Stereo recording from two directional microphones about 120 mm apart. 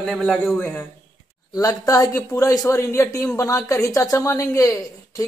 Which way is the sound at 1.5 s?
30° left (ahead or behind).